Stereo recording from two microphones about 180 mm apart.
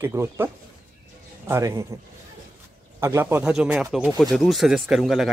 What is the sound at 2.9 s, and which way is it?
Speech, 15° right (ahead or behind).